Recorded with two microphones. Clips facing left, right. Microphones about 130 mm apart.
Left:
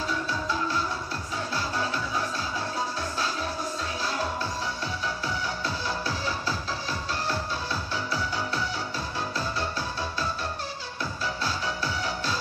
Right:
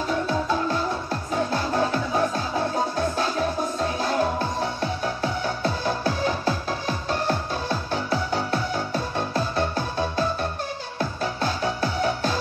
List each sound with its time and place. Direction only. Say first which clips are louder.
0.3 s music: right 5 dB; 50° right (ahead or behind)